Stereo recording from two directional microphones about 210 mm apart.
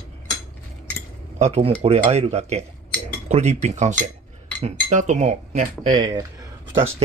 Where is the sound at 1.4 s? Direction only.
30° right (ahead or behind).